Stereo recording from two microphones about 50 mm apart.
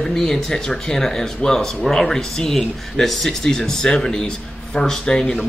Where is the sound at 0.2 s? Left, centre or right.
Centre.